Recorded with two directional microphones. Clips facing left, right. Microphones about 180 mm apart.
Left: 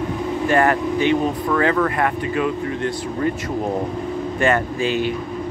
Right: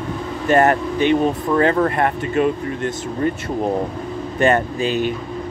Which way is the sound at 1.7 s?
35° right (ahead or behind).